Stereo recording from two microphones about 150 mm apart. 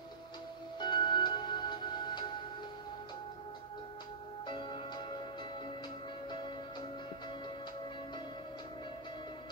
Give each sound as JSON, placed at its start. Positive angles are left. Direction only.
{"t": 0.7, "sound": "music", "side_deg": 30}
{"t": 4.5, "sound": "music", "side_deg": 35}